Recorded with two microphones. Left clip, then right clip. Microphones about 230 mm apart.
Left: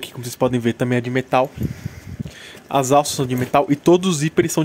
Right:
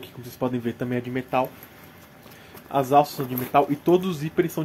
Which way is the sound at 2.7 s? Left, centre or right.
Left.